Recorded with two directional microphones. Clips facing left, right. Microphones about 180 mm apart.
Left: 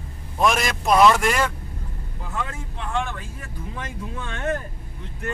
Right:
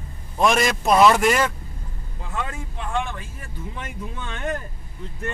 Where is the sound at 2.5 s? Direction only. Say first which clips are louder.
Right 1 dB; 20° right (ahead or behind).